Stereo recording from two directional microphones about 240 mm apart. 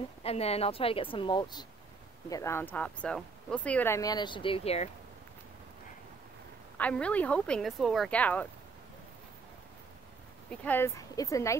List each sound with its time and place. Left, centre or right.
0.2 s speech: left
6.8 s speech: centre
10.5 s speech: centre